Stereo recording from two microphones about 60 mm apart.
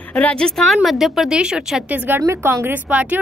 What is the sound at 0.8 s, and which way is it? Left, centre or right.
A woman's voice, centre.